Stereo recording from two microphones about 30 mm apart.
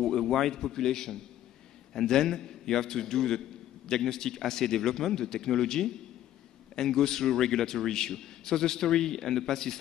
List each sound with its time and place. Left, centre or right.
0.0 s a man's voice: centre